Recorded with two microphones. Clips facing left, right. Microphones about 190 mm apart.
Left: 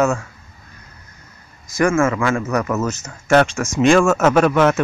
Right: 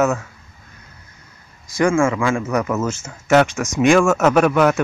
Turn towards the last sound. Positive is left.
turn(degrees=-5)  # may be behind; listen again after turning